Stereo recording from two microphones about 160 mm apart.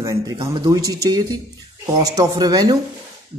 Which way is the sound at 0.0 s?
20° right (ahead or behind).